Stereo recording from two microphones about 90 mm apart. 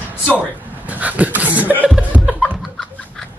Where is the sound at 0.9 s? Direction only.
15° right (ahead or behind).